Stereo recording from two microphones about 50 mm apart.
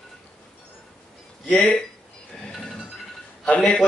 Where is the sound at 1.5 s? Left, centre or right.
Left.